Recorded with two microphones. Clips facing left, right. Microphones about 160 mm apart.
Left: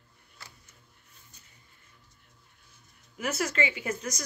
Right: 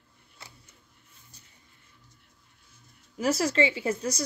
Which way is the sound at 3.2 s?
35° right (ahead or behind).